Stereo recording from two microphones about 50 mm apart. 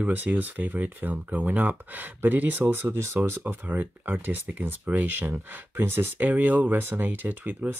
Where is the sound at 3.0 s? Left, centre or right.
Right.